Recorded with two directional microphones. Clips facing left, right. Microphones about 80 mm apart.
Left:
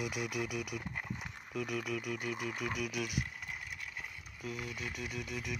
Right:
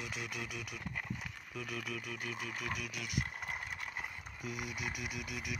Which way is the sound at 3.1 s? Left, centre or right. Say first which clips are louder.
Right 1 dB; right.